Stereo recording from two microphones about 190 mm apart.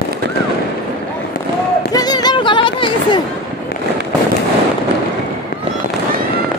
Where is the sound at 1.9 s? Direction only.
20° left (ahead or behind).